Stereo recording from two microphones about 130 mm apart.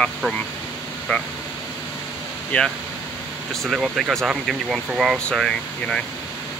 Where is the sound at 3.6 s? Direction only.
5° right (ahead or behind).